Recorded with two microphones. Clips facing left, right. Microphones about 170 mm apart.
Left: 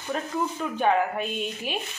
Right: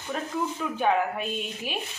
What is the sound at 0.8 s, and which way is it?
Speech, 5° right (ahead or behind).